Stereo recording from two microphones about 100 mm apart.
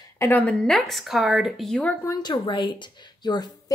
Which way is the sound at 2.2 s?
50° left (ahead or behind).